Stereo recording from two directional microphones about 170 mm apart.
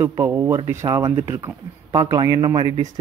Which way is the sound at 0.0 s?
15° right (ahead or behind).